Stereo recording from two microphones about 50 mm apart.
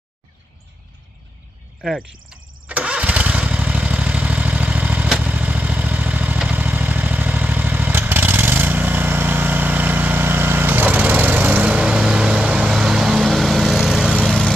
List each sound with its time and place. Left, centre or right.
1.8 s speech: centre
2.6 s engine starting: right
3.3 s vehicle: right
13.3 s vehicle: centre
14.2 s lawn mower: centre